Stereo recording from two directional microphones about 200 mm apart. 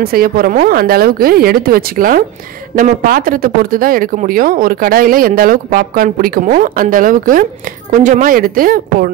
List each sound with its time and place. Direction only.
0.0 s speech: 50° right (ahead or behind)